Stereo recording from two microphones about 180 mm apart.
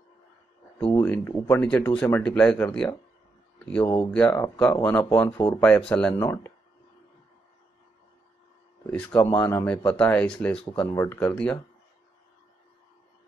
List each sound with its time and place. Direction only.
0.7 s speech: 5° left (ahead or behind)
3.8 s speech: 25° left (ahead or behind)
4.1 s speech: 10° left (ahead or behind)
8.9 s speech: 5° left (ahead or behind)